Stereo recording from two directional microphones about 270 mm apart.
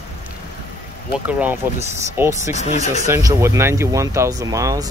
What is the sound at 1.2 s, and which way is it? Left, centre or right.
Speech, centre.